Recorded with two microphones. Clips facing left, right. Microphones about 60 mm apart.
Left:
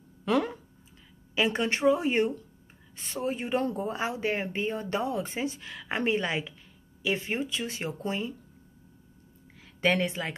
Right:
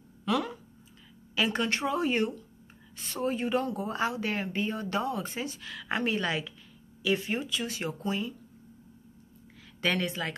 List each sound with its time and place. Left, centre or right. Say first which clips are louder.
0.2 s a sound: left 3 dB; left
1.3 s speech: left 2 dB; left
3.5 s speech: left 1 dB; left
9.8 s speech: left 3 dB; left